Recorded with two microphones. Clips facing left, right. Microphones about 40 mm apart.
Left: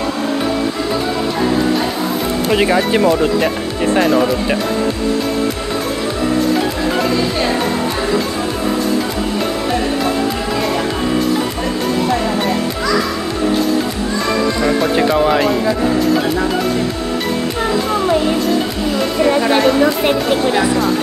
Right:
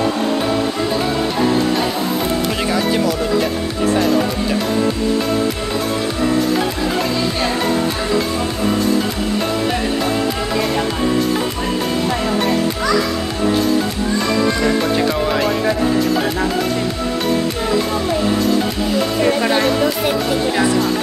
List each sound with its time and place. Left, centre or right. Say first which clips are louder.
2.5 s speech: left 4 dB; left
15.0 s speech: left 4 dB; centre